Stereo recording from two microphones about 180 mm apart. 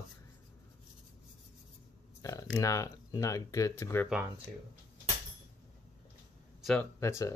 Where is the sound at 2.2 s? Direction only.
20° left (ahead or behind).